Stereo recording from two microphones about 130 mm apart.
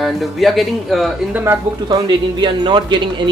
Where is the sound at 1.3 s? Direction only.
15° right (ahead or behind).